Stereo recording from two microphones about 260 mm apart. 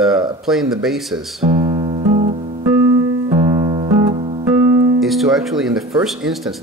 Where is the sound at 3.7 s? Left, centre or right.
Centre.